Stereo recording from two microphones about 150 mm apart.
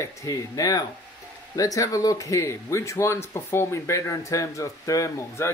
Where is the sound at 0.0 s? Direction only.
20° left (ahead or behind).